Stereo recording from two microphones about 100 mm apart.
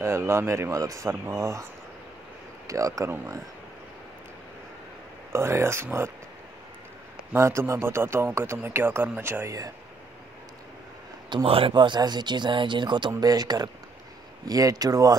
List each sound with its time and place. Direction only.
0.3 s speech: 25° right (ahead or behind)
5.3 s speech: 25° right (ahead or behind)
7.3 s speech: 30° right (ahead or behind)
11.2 s speech: 60° right (ahead or behind)
13.1 s speech: 40° right (ahead or behind)